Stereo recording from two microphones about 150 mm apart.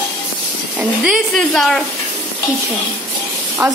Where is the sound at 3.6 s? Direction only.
20° right (ahead or behind).